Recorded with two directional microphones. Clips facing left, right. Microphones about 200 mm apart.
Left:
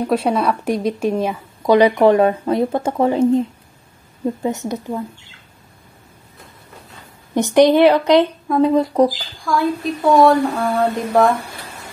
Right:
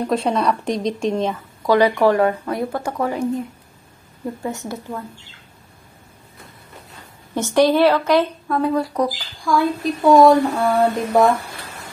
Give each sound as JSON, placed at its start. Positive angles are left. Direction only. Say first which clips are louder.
{"t": 0.0, "sound": "speech", "louder": "left 2 dB", "side_deg": 5}
{"t": 7.3, "sound": "speech", "louder": "left 4 dB", "side_deg": 15}
{"t": 9.4, "sound": "speech", "louder": "even", "side_deg": 0}